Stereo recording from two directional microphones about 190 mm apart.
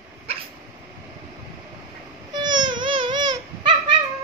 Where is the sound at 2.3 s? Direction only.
25° right (ahead or behind).